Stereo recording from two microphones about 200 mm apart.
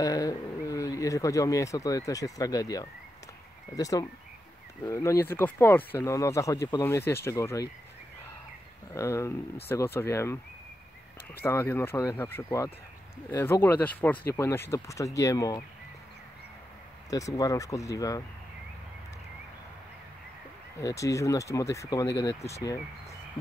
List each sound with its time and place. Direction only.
0.0 s speech: 20° left (ahead or behind)
8.9 s speech: 15° left (ahead or behind)
11.4 s speech: 10° left (ahead or behind)
17.1 s speech: 20° left (ahead or behind)
20.8 s speech: 15° left (ahead or behind)